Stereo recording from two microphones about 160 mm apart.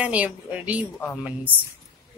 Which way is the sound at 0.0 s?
10° right (ahead or behind).